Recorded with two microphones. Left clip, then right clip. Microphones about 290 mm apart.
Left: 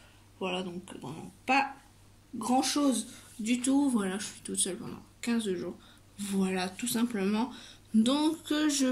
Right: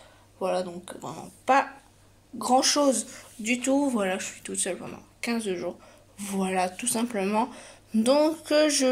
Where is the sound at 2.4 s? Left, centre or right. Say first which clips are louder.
Right 7 dB; centre.